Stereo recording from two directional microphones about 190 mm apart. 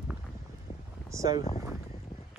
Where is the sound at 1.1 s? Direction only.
15° right (ahead or behind).